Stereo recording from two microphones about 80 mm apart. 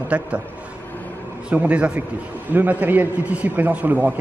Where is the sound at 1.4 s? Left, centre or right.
Centre.